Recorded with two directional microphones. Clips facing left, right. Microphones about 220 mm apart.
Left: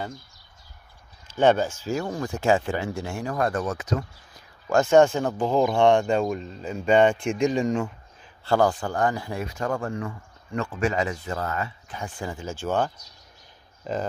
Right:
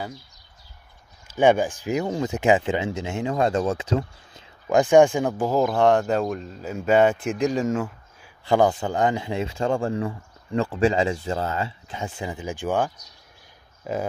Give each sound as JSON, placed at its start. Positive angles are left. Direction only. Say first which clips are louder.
{"t": 1.2, "sound": "speech", "louder": "right 2 dB", "side_deg": -10}
{"t": 8.5, "sound": "speech", "louder": "right 2 dB", "side_deg": -20}